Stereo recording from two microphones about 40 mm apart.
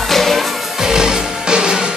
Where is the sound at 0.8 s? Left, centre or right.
Centre.